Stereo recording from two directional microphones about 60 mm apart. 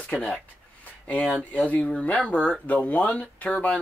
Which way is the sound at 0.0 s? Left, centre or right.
Left.